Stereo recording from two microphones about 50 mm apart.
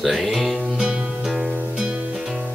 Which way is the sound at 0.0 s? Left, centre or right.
Centre.